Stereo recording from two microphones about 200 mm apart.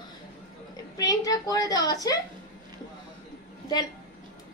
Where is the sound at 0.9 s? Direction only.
20° left (ahead or behind).